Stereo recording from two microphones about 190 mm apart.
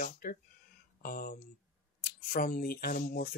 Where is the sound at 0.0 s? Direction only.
50° left (ahead or behind).